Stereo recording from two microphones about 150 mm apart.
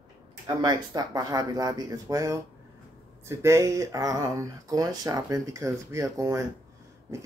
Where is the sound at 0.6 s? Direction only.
25° right (ahead or behind).